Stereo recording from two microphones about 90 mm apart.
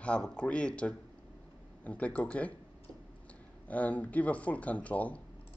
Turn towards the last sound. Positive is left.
turn(degrees=15)  # may be behind; listen again after turning